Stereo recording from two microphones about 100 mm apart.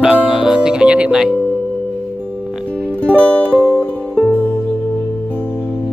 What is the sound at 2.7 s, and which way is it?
Music, 15° left (ahead or behind).